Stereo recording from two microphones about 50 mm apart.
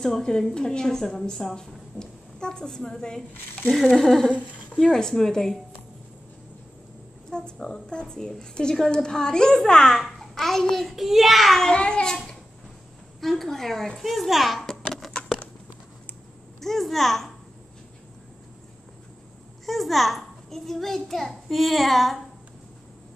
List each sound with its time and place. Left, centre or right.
0.0 s a child's voice: centre
7.2 s a child's voice: centre
11.6 s a child's voice: centre
13.2 s a child's voice: centre
15.0 s a sound: centre
16.6 s a child's voice: centre
19.6 s a child's voice: centre